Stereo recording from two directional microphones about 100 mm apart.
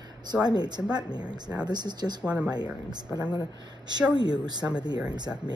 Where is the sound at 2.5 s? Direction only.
45° right (ahead or behind).